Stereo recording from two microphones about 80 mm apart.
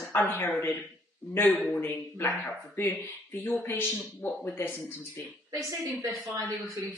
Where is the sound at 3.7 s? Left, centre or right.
Left.